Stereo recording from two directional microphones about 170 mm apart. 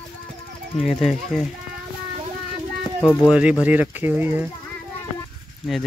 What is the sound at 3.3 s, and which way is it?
Speech, 5° right (ahead or behind).